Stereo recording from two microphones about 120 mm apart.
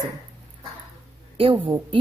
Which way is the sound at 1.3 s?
45° right (ahead or behind).